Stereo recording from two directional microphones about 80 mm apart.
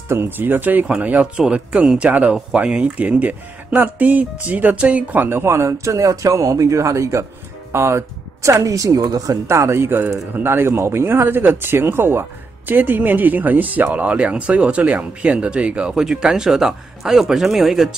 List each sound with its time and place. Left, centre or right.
0.1 s speech: right; by 17.8 s centre